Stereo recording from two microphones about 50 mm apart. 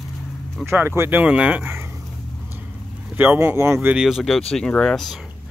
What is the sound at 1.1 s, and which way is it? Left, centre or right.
Speech, right.